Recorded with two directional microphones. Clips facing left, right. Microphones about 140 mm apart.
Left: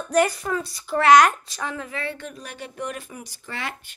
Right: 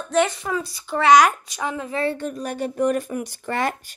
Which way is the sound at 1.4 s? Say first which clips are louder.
Right 4 dB; 20° right (ahead or behind).